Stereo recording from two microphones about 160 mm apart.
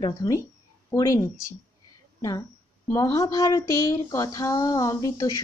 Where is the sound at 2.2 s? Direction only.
20° left (ahead or behind).